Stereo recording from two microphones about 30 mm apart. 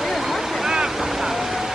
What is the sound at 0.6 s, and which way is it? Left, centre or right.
Vehicle, centre.